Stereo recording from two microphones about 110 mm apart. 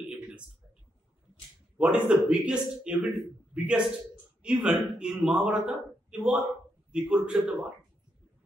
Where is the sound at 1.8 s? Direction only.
10° right (ahead or behind).